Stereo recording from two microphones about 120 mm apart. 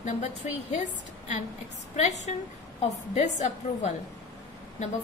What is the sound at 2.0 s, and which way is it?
A woman's voice, 70° left (ahead or behind).